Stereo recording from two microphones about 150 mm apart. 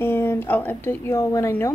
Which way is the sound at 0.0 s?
15° left (ahead or behind).